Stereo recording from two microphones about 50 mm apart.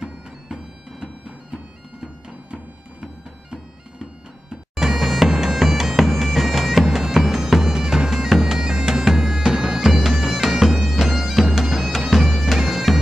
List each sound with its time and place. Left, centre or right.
2.5 s music: centre
4.7 s bagpipes: centre